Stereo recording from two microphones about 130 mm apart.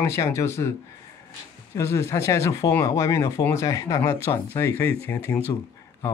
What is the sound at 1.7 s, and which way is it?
Speech, 20° left (ahead or behind).